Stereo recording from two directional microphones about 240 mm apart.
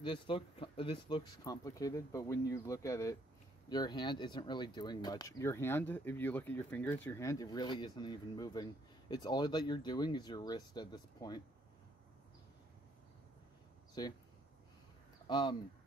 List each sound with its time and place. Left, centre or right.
0.0 s speech: left
14.0 s speech: centre
15.2 s speech: centre